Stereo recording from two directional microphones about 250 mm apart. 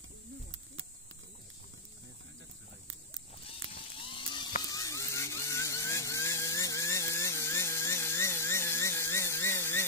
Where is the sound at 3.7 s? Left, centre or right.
Centre.